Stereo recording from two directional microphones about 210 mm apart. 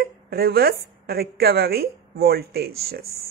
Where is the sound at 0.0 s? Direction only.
45° right (ahead or behind).